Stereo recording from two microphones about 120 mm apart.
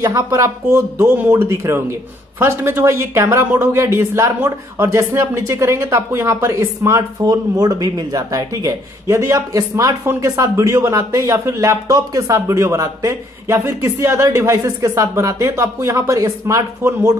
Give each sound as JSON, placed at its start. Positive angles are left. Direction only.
{"t": 0.0, "sound": "speech", "side_deg": -25}